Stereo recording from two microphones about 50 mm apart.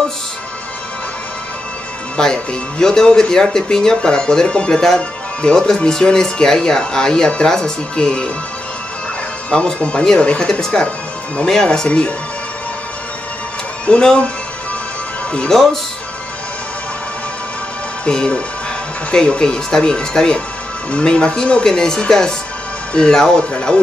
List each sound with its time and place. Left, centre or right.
2.1 s speech: centre
9.5 s speech: left
13.8 s speech: centre
15.3 s speech: centre
18.0 s speech: centre